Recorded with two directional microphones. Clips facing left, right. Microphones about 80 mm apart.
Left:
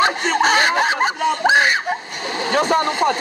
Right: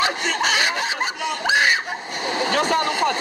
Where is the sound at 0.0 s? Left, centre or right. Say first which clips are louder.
Left 5 dB; left.